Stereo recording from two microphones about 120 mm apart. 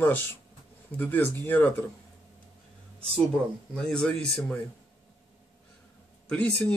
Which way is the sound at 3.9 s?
10° left (ahead or behind).